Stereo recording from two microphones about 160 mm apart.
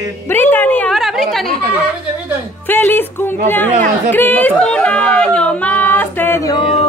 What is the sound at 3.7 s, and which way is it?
Chatter, 50° right (ahead or behind).